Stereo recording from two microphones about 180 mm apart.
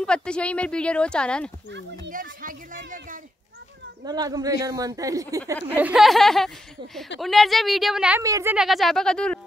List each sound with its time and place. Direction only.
0.0 s speech: 5° left (ahead or behind)
2.1 s speech: 50° right (ahead or behind)
4.0 s speech: 20° right (ahead or behind)
5.8 s speech: 5° right (ahead or behind)
8.2 s a woman's voice: 15° right (ahead or behind)
8.5 s speech: centre (ahead or behind)